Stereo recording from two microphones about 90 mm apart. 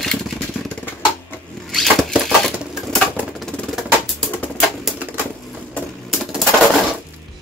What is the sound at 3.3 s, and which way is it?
Music, 5° left (ahead or behind).